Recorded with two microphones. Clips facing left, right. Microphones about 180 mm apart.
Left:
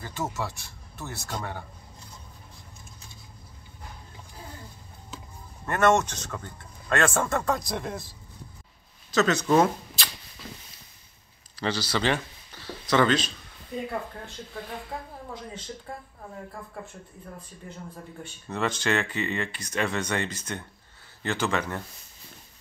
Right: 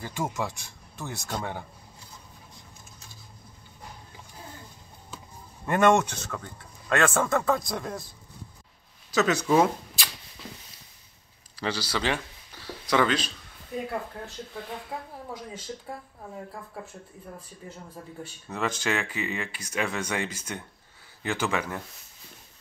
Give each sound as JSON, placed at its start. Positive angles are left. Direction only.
{"t": 0.0, "sound": "speech", "side_deg": -15}
{"t": 5.7, "sound": "speech", "side_deg": -10}
{"t": 9.1, "sound": "speech", "side_deg": -10}
{"t": 11.5, "sound": "speech", "side_deg": -10}
{"t": 18.5, "sound": "speech", "side_deg": -5}